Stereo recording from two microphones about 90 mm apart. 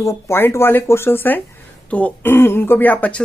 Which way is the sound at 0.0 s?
30° left (ahead or behind).